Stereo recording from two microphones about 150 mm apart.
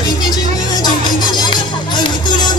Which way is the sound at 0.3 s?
30° left (ahead or behind).